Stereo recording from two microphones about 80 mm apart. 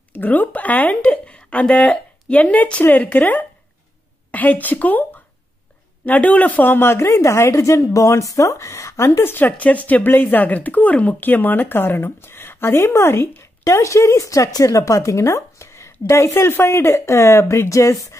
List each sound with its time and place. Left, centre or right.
0.1 s a woman's voice: left
6.0 s speech: left
9.5 s speech: centre; by 17.9 s left